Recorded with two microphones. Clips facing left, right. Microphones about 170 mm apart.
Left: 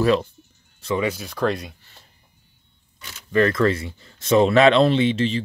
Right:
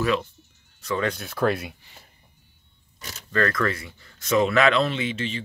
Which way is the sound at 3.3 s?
20° left (ahead or behind).